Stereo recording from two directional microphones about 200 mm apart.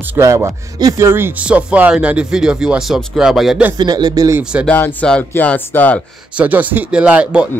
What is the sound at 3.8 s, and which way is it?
Speech, 20° right (ahead or behind).